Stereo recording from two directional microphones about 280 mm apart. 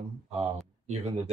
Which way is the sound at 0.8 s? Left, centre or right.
Right.